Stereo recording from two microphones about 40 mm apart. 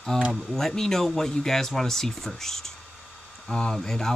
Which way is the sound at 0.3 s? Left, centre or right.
Centre.